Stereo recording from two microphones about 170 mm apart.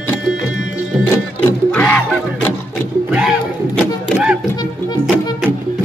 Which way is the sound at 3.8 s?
Centre (ahead or behind).